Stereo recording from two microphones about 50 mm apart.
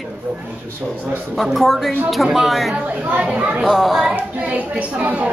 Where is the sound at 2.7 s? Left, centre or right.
Right.